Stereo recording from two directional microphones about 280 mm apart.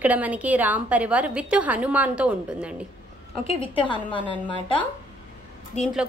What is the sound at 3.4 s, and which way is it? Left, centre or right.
A woman's voice, centre.